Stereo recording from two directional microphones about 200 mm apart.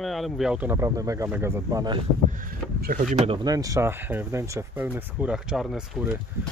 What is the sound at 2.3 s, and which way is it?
Speech, 45° right (ahead or behind).